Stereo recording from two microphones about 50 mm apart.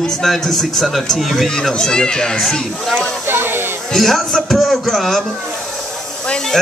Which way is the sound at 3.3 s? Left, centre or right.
Right.